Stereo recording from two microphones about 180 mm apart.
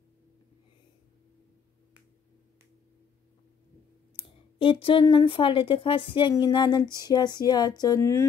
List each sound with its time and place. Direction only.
4.2 s speech: 30° left (ahead or behind)